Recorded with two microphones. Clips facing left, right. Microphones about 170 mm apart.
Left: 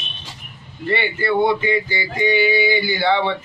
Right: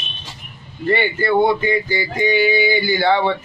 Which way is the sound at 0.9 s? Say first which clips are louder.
Right 3 dB; 45° right (ahead or behind).